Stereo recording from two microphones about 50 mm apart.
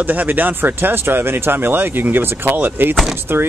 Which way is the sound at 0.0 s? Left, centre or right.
Right.